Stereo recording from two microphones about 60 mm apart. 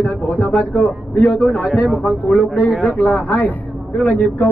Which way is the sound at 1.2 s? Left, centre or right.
Centre.